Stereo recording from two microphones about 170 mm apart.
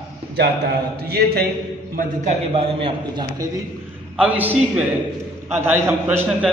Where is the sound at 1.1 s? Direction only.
65° right (ahead or behind).